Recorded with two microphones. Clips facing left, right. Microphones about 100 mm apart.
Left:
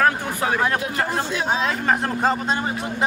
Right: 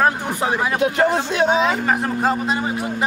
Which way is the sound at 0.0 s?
20° right (ahead or behind).